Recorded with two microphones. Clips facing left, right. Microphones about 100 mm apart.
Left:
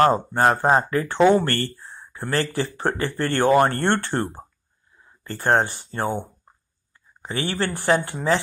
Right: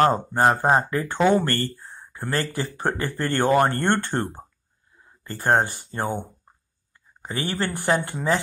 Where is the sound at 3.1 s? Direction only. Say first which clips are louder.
Left 2 dB; 20° left (ahead or behind).